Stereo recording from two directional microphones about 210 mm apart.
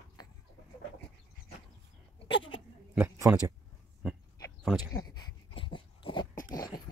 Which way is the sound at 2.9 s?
15° right (ahead or behind).